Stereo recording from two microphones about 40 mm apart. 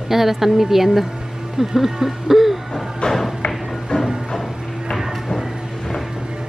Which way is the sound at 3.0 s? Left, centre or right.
Left.